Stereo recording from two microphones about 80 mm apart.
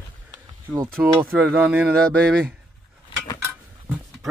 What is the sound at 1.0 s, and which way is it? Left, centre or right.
Speech, right.